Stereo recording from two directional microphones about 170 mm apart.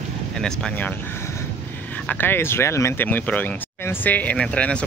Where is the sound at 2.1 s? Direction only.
10° left (ahead or behind).